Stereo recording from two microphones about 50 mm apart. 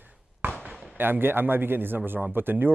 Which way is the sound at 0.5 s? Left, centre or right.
Right.